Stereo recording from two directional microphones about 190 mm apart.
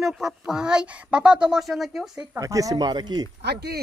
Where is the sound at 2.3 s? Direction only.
15° right (ahead or behind).